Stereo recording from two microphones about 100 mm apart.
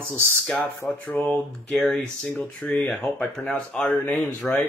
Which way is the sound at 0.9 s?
15° left (ahead or behind).